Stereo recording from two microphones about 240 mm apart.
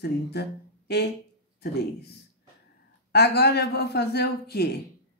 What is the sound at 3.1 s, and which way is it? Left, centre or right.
Speech, left.